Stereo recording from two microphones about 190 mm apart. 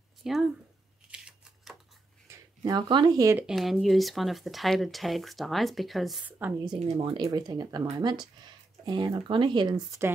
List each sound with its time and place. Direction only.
0.2 s speech: centre (ahead or behind)
1.1 s a sound: centre (ahead or behind)
2.2 s speech: 15° right (ahead or behind)
3.4 s speech: centre (ahead or behind)
6.3 s a woman's voice: 15° right (ahead or behind)
6.9 s speech: 30° right (ahead or behind)